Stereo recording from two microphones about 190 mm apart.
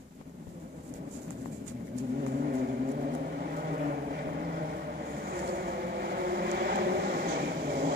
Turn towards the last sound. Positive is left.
turn(degrees=-55)  # may be behind; listen again after turning